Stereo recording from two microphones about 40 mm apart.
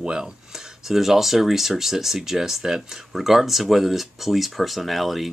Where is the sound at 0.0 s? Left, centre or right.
Centre.